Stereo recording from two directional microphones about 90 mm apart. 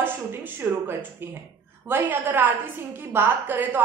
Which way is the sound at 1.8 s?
25° right (ahead or behind).